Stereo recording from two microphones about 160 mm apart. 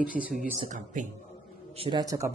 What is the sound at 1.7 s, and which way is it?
Speech, 35° right (ahead or behind).